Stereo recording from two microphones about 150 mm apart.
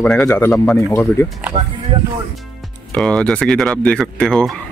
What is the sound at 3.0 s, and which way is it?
Speech, 5° left (ahead or behind).